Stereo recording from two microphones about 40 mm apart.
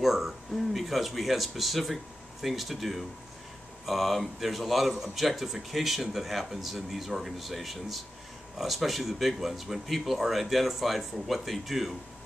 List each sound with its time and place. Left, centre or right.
0.0 s speech: centre